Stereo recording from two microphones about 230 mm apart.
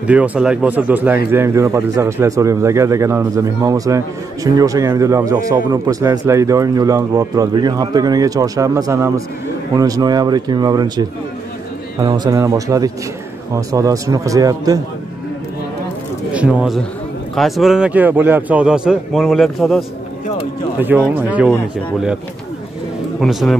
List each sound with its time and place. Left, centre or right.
0.0 s speech: centre
16.3 s a man's voice: centre
20.8 s speech: centre
23.2 s a man's voice: centre